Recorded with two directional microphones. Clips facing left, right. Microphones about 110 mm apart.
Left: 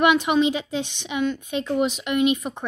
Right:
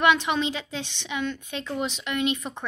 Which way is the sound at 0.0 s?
15° left (ahead or behind).